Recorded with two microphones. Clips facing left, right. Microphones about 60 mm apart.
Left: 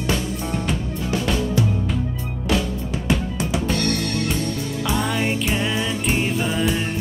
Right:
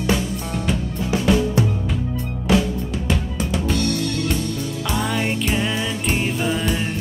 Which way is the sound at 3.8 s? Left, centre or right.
Left.